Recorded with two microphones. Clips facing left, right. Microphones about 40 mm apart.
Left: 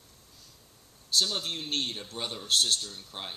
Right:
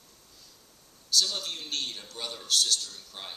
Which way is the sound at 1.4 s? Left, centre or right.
Left.